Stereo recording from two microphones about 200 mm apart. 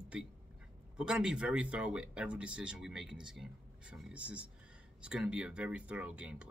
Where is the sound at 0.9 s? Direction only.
5° right (ahead or behind).